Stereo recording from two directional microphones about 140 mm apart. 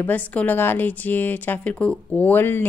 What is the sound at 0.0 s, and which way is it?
Speech, 10° left (ahead or behind).